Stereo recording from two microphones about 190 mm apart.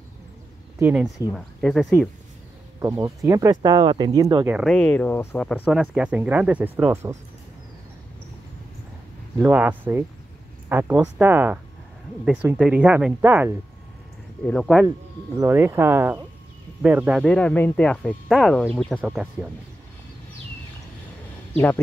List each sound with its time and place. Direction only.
0.7 s speech: 5° right (ahead or behind)
2.8 s speech: 15° right (ahead or behind)
4.5 s speech: 5° right (ahead or behind)
4.7 s speech: 5° left (ahead or behind); by 7.2 s 15° right (ahead or behind)
9.4 s speech: 10° right (ahead or behind)
14.4 s speech: centre (ahead or behind)
14.9 s speech: 15° right (ahead or behind)
17.3 s speech: 5° left (ahead or behind)
18.9 s speech: 5° right (ahead or behind)